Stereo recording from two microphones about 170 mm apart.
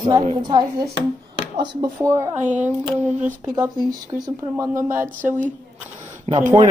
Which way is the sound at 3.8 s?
20° right (ahead or behind).